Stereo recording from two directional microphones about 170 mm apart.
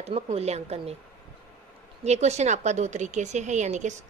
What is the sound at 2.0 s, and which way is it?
A woman's voice, 40° right (ahead or behind).